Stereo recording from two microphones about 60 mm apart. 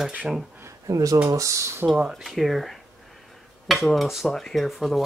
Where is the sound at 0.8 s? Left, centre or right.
Right.